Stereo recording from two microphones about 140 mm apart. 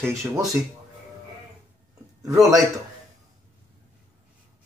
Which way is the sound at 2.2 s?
25° right (ahead or behind).